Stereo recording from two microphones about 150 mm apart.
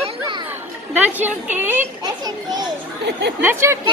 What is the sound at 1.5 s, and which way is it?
Speech, 15° right (ahead or behind).